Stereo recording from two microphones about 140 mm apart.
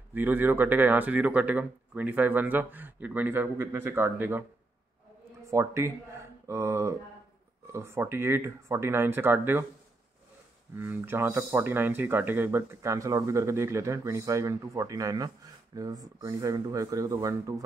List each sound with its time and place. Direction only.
0.1 s speech: 15° right (ahead or behind)
5.5 s speech: 20° right (ahead or behind)
10.8 s speech: 15° right (ahead or behind)